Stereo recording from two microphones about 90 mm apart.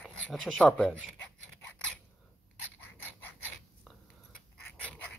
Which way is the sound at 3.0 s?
20° left (ahead or behind).